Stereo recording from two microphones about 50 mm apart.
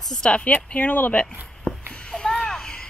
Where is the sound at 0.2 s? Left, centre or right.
Left.